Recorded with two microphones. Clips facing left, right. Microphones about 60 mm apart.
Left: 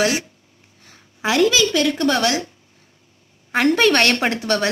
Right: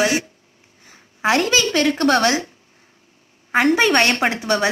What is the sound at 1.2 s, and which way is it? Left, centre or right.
Speech, right.